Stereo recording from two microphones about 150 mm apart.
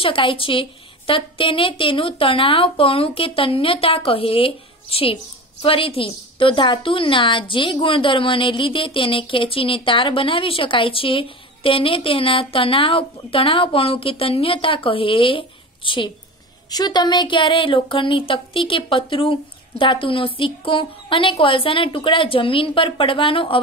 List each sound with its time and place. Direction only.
0.0 s a woman's voice: 35° left (ahead or behind)